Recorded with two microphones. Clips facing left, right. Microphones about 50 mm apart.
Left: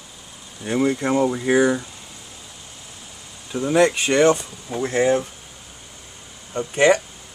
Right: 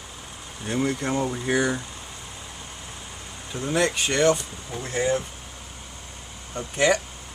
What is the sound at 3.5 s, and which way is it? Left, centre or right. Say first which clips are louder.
Speech: left 7 dB; centre.